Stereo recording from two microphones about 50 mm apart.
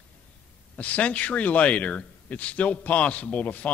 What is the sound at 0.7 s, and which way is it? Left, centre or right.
Speech, left.